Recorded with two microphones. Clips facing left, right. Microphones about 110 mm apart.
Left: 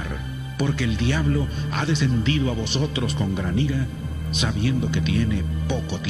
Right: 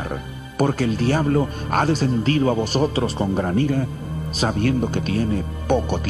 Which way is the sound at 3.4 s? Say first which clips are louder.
Right 4 dB; 50° right (ahead or behind).